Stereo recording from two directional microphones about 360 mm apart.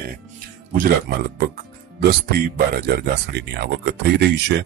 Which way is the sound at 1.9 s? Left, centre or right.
Right.